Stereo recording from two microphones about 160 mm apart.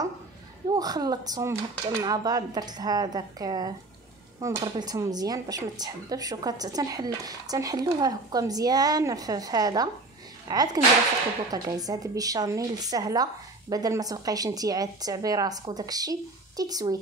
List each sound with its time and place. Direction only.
0.7 s speech: 25° right (ahead or behind)